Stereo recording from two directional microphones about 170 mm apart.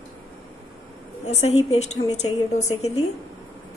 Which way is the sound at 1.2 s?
40° left (ahead or behind).